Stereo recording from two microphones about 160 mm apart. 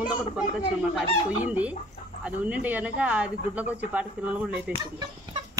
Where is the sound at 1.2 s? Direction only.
10° right (ahead or behind).